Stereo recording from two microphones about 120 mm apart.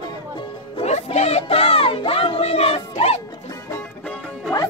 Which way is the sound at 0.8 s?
65° left (ahead or behind).